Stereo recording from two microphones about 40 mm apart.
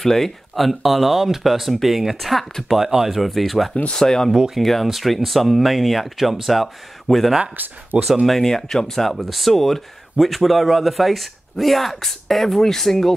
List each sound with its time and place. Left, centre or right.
0.0 s speech: centre
3.9 s speech: centre
4.6 s speech: centre
7.5 s speech: right
8.0 s speech: centre
8.4 s speech: centre